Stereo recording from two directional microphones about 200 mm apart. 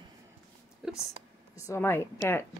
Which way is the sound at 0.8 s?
5° right (ahead or behind).